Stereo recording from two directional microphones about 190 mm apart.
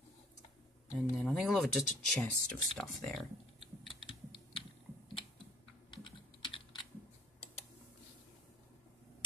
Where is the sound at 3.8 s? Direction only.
Centre (ahead or behind).